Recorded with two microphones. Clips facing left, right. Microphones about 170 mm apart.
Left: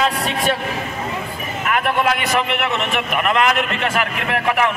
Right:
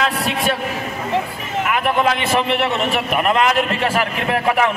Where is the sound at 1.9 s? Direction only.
25° right (ahead or behind).